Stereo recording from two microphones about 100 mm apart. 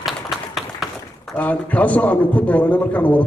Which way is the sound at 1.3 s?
15° left (ahead or behind).